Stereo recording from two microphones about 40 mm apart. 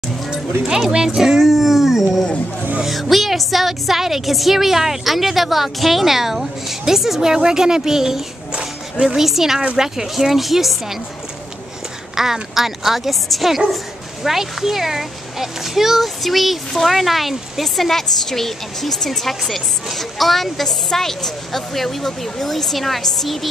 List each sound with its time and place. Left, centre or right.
0.7 s dog: centre
2.9 s a child's voice: centre
12.2 s a child's voice: centre